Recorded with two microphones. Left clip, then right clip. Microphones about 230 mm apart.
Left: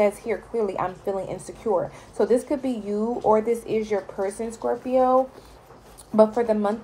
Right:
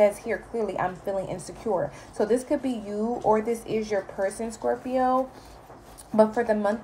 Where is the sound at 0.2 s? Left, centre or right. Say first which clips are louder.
Left 3 dB; centre.